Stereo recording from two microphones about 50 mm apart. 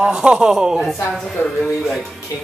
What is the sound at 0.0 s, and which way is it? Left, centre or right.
Speech, centre.